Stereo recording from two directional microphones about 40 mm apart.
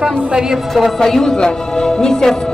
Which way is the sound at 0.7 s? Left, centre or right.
Centre.